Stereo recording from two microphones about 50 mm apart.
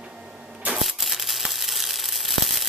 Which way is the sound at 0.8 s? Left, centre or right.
Centre.